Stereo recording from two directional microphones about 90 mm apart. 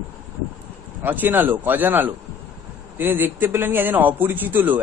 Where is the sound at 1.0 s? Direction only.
20° right (ahead or behind).